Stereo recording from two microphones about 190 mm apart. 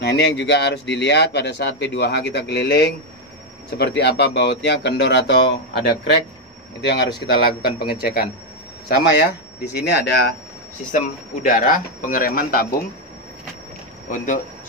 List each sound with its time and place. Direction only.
0.0 s speech: 60° left (ahead or behind)
10.9 s speech: 45° left (ahead or behind)
14.1 s speech: 45° left (ahead or behind)